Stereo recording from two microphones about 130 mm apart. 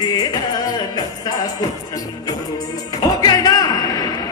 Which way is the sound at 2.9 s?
30° left (ahead or behind).